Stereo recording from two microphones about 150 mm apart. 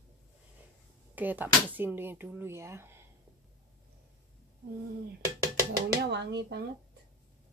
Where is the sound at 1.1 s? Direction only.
10° right (ahead or behind).